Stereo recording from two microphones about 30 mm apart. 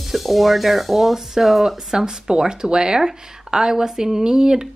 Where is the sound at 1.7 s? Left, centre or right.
Centre.